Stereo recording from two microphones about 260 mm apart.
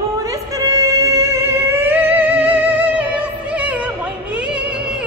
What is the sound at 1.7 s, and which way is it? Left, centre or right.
Music, centre.